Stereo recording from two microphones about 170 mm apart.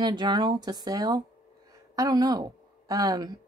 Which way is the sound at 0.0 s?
25° right (ahead or behind).